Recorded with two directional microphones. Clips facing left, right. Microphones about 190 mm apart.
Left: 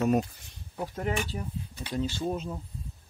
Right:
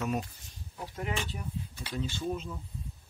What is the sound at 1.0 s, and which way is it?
Speech, 40° left (ahead or behind).